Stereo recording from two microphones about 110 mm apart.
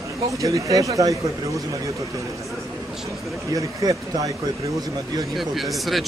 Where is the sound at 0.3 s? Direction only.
30° right (ahead or behind).